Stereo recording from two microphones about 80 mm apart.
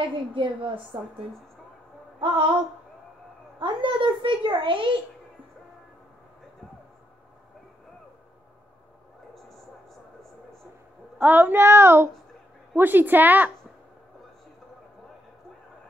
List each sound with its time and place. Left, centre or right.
0.0 s a child's voice: right
0.9 s speech: right
2.1 s a sound: right
3.5 s a child's voice: right
11.1 s child singing: right